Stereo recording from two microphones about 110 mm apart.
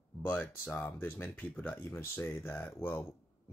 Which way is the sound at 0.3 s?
15° left (ahead or behind).